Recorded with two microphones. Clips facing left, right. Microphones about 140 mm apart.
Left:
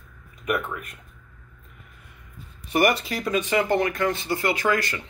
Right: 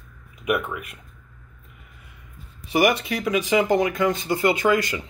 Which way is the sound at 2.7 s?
Centre (ahead or behind).